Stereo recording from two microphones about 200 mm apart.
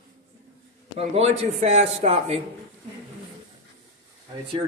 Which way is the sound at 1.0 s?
30° right (ahead or behind).